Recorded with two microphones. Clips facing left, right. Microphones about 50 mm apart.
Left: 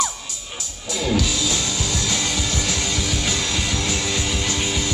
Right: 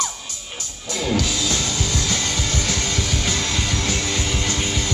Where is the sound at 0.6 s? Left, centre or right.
Centre.